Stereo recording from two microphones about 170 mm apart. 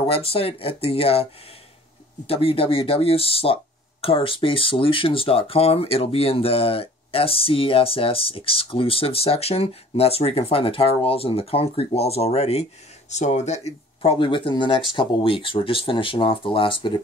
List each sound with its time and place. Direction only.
0.1 s speech: 35° left (ahead or behind)
2.2 s speech: 35° left (ahead or behind)